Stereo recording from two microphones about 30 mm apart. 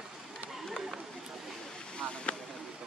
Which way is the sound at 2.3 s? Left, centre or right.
Left.